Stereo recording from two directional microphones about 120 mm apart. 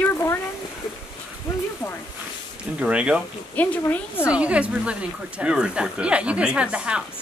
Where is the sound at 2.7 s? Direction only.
10° right (ahead or behind).